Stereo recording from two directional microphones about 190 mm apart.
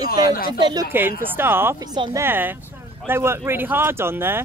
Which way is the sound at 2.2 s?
10° right (ahead or behind).